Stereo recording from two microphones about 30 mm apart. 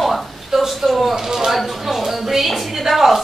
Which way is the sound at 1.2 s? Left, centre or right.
Centre.